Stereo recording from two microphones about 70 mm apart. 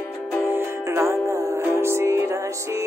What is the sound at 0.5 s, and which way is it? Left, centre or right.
Music, right.